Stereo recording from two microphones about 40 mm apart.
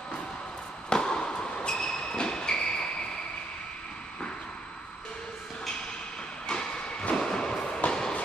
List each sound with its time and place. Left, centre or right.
0.8 s basketball bounce: centre
6.4 s train: centre